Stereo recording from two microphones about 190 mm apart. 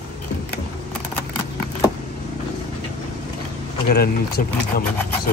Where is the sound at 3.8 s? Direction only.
55° left (ahead or behind).